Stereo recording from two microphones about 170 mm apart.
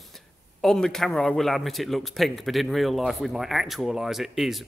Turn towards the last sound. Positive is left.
turn(degrees=0)  # may be behind; listen again after turning